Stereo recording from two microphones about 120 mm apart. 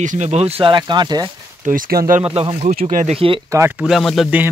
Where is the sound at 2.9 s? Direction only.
75° right (ahead or behind).